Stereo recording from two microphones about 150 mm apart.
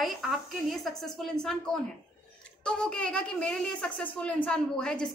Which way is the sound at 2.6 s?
5° left (ahead or behind).